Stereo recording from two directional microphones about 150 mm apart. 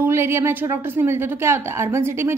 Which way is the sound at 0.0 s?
15° right (ahead or behind).